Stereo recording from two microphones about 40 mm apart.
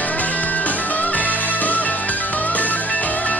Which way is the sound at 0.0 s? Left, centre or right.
Left.